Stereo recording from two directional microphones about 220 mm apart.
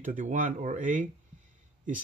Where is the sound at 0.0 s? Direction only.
35° right (ahead or behind).